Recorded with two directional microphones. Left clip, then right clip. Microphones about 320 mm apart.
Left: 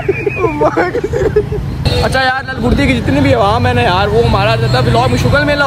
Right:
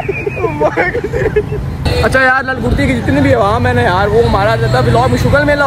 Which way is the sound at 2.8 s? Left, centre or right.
Centre.